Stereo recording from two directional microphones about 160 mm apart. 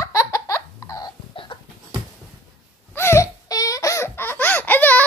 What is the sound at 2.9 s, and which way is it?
Laughter, 15° left (ahead or behind).